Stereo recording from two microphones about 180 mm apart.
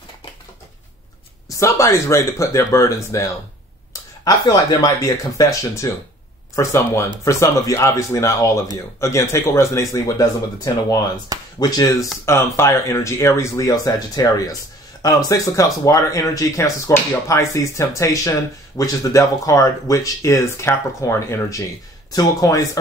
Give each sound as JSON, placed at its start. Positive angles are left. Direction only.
{"t": 1.5, "sound": "speech", "side_deg": 20}
{"t": 11.3, "sound": "speech", "side_deg": -20}
{"t": 11.6, "sound": "speech", "side_deg": 20}